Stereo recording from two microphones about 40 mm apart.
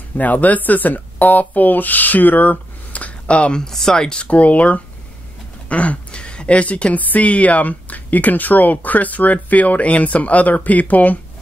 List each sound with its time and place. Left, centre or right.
0.2 s speech: left
3.5 s speech: centre
4.3 s a woman's voice: left